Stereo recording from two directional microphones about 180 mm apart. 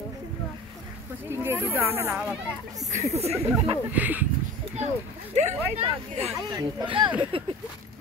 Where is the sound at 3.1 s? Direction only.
35° right (ahead or behind).